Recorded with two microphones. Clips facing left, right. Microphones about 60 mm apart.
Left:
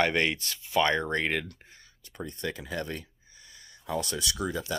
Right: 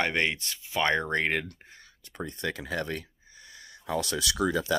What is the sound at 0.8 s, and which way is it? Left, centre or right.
Speech, right.